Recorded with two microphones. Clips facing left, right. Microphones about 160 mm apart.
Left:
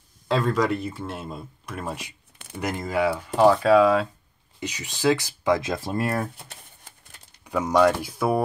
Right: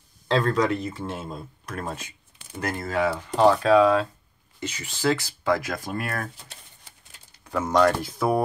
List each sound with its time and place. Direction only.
0.3 s speech: 5° left (ahead or behind)
4.6 s speech: 15° left (ahead or behind)
7.4 s speech: 10° left (ahead or behind)